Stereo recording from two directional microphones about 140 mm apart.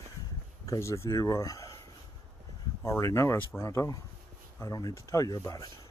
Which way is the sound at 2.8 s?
20° left (ahead or behind).